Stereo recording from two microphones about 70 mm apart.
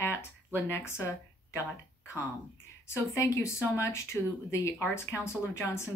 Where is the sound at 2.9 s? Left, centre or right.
Left.